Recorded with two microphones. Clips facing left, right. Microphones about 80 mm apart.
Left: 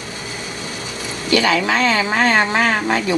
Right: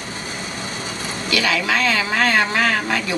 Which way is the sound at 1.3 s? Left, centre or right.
Left.